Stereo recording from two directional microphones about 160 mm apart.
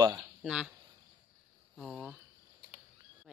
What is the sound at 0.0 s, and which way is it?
Speech, 20° right (ahead or behind).